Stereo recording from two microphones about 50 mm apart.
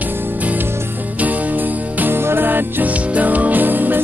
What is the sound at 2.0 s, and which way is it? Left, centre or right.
Music, right.